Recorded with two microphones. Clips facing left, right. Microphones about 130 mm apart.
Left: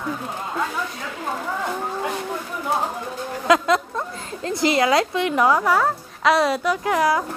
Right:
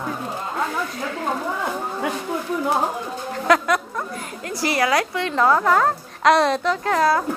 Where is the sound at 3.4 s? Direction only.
20° left (ahead or behind).